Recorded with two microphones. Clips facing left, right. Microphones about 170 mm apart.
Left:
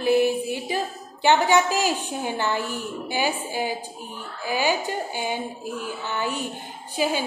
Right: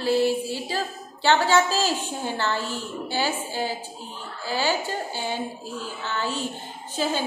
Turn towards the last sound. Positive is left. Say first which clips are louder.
# left 2 dB
turn(degrees=10)  # may be behind; listen again after turning